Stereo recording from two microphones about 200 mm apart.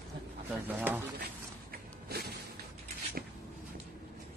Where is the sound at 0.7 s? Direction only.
10° right (ahead or behind).